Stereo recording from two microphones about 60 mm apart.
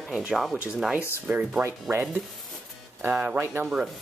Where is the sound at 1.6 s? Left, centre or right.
Right.